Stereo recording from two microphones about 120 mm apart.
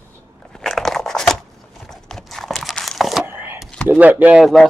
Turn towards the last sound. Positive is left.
turn(degrees=0)  # may be behind; listen again after turning